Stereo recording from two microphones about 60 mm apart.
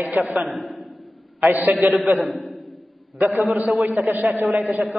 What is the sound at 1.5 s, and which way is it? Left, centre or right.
Speech, right.